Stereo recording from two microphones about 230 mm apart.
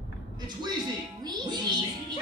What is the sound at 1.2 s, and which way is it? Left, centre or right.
Music, centre.